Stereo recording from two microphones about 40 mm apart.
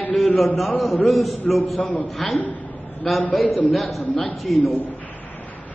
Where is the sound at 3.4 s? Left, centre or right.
Left.